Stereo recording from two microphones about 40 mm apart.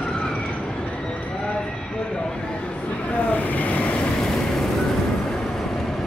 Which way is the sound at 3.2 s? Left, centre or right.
Left.